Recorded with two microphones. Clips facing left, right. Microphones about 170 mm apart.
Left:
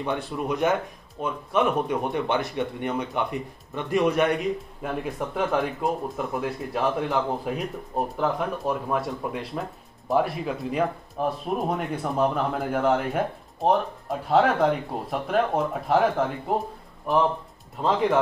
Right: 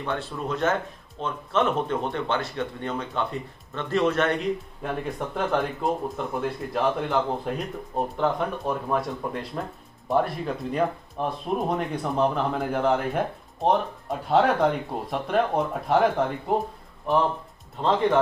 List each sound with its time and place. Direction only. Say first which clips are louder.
0.0 s speech: left 2 dB; 15° left (ahead or behind)